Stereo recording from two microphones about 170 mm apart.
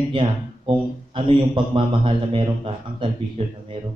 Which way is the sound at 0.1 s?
30° right (ahead or behind).